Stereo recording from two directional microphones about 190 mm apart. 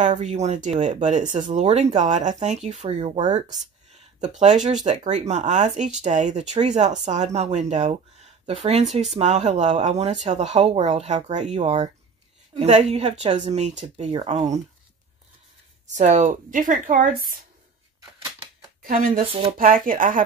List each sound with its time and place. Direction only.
0.0 s speech: 40° right (ahead or behind)
15.9 s speech: 40° right (ahead or behind)
18.8 s speech: 45° right (ahead or behind)
19.1 s speech: 30° right (ahead or behind)
19.5 s speech: 45° right (ahead or behind)